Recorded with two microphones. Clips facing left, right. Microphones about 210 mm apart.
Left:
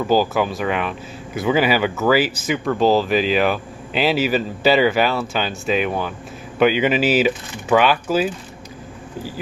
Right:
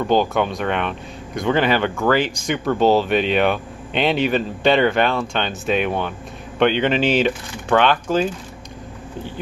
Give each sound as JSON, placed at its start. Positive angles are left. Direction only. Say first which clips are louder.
{"t": 0.0, "sound": "speech", "louder": "even", "side_deg": 5}